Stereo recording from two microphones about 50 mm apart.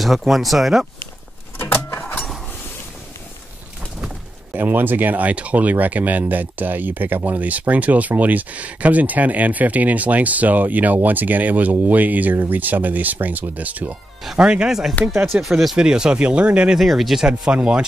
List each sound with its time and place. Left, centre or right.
0.0 s speech: centre
2.0 s a sound: left
4.6 s speech: right
14.3 s speech: centre
15.0 s speech: left
15.3 s speech: centre
15.7 s speech: centre
16.7 s speech: centre
17.3 s speech: right